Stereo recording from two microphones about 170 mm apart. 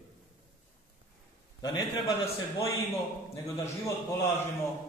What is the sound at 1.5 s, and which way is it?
Speech, 20° left (ahead or behind).